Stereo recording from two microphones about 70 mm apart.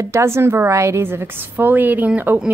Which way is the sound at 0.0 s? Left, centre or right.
Right.